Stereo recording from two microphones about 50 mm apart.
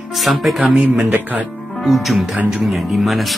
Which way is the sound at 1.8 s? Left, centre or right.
Centre.